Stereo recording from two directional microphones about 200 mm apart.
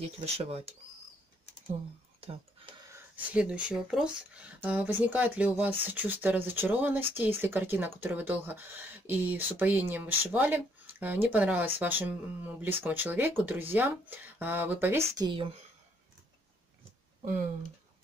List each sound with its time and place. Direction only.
0.0 s speech: 30° right (ahead or behind)
2.9 s speech: 5° right (ahead or behind); by 15.6 s 25° right (ahead or behind)